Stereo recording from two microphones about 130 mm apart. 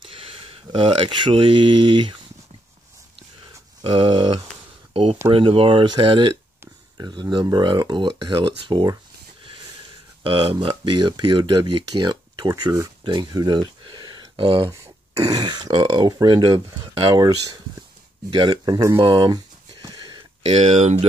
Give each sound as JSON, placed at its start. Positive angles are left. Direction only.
{"t": 0.0, "sound": "speech", "side_deg": -45}
{"t": 3.8, "sound": "speech", "side_deg": -40}
{"t": 10.2, "sound": "speech", "side_deg": -40}
{"t": 14.7, "sound": "speech", "side_deg": -25}
{"t": 18.9, "sound": "a sound", "side_deg": -40}
{"t": 20.4, "sound": "speech", "side_deg": -60}